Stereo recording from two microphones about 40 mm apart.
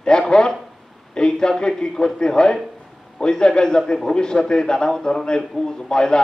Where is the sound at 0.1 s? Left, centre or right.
Centre.